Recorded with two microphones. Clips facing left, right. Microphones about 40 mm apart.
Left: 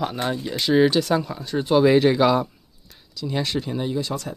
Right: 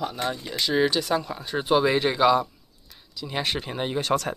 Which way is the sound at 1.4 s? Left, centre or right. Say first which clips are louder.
Left 4 dB; centre.